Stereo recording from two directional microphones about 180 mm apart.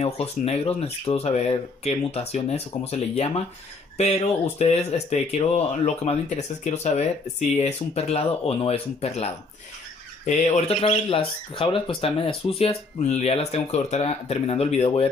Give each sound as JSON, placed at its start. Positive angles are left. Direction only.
{"t": 0.0, "sound": "speech", "side_deg": 35}